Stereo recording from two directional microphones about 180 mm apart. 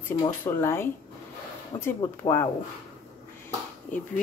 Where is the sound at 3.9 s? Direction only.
45° left (ahead or behind).